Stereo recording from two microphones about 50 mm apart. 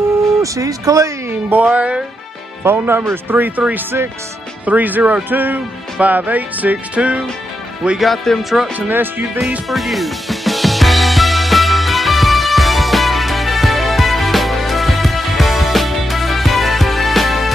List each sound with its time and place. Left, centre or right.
0.4 s speech: right
1.5 s music: right
2.6 s speech: right
3.7 s speech: right
4.6 s music: right
8.0 s speech: centre
8.7 s music: right
9.7 s music: centre